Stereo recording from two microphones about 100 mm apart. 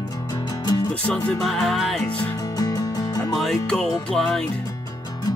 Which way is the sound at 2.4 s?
35° left (ahead or behind).